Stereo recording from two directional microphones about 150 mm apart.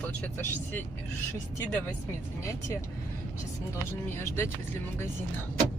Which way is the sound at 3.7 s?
20° left (ahead or behind).